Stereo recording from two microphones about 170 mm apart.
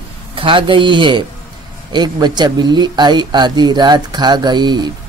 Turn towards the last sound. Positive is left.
turn(degrees=-25)  # may be behind; listen again after turning